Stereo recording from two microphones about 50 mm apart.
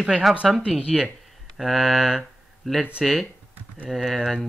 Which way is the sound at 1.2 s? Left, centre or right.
Centre.